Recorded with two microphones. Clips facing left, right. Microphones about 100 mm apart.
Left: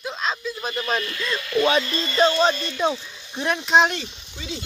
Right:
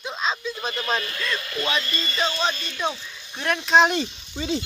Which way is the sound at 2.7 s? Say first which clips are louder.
Left 4 dB; 10° left (ahead or behind).